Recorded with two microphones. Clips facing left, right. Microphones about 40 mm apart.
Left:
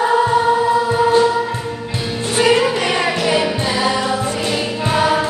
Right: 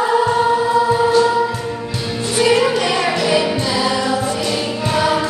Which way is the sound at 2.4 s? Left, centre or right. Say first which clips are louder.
Even; left.